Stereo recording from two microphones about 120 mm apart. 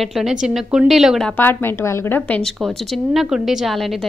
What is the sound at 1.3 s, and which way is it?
A woman's voice, 15° left (ahead or behind).